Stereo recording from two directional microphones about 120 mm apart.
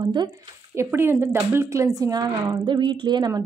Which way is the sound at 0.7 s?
20° right (ahead or behind).